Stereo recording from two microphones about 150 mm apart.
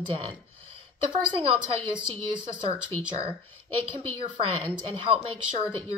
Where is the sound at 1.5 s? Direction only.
30° right (ahead or behind).